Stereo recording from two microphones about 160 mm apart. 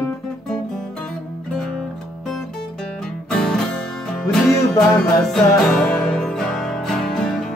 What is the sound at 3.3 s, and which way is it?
Music, 5° left (ahead or behind).